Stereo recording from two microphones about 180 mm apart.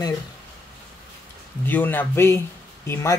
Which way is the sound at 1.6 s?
10° left (ahead or behind).